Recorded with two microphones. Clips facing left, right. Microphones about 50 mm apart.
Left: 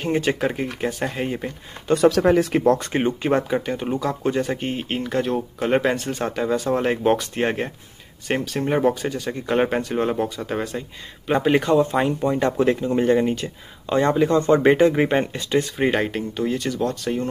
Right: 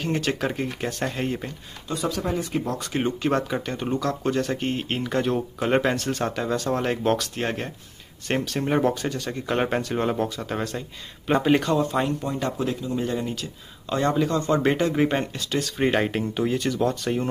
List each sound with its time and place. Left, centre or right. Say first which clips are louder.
0.1 s speech: left 5 dB; centre
1.9 s speech: left 11 dB; left
2.6 s speech: left 10 dB; left
3.3 s speech: left 3 dB; centre
7.2 s speech: left 5 dB; left
8.3 s speech: left 2 dB; centre
11.7 s speech: left 4 dB; centre; by 13.5 s left
13.8 s speech: left 4 dB; left
15.8 s speech: left 1 dB; centre